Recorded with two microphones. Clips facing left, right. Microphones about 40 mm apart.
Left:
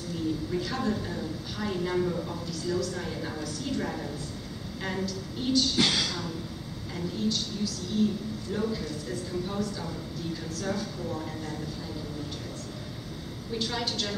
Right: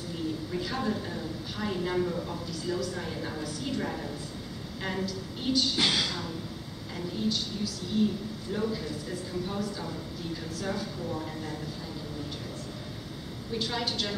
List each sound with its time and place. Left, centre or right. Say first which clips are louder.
0.5 s a man's voice: left 2 dB; centre
13.5 s a woman's voice: even; centre